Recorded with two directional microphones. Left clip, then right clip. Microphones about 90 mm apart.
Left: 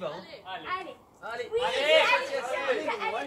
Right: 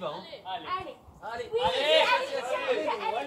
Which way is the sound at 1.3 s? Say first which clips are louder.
Even; 20° right (ahead or behind).